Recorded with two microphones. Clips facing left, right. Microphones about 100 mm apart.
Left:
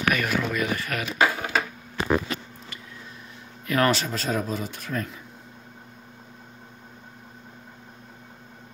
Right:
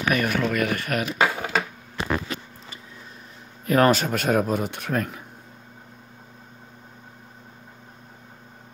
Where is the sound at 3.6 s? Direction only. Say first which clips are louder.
Right 4 dB; 40° right (ahead or behind); by 5.2 s 65° right (ahead or behind).